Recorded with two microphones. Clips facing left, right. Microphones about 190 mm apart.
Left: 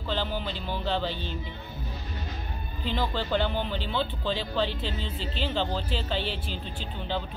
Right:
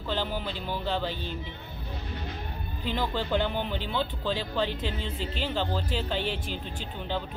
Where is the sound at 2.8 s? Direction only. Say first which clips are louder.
Even; 15° right (ahead or behind).